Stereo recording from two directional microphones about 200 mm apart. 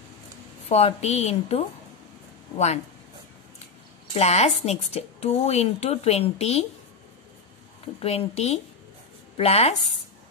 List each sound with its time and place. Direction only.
0.7 s speech: 30° left (ahead or behind)
4.1 s speech: 30° left (ahead or behind)
8.0 s speech: 30° left (ahead or behind)